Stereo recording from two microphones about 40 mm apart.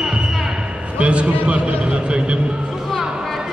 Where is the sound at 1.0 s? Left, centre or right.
Right.